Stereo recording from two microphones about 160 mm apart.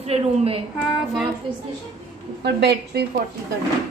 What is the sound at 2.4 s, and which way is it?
Speech, 90° right.